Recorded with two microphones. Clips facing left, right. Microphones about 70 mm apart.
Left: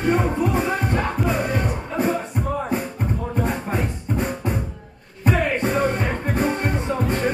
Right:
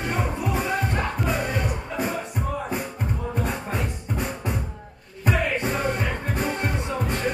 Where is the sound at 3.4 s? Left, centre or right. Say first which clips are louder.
Left 5 dB; left.